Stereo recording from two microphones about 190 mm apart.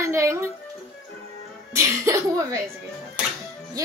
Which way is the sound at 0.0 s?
15° right (ahead or behind).